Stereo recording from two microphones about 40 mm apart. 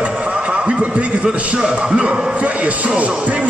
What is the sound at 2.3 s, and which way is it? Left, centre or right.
Speech, right.